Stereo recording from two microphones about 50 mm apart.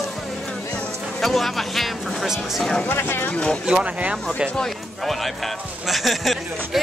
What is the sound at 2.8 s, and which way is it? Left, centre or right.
Speech, left.